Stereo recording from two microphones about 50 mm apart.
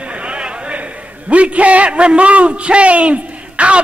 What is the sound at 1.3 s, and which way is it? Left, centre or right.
A man's voice, right.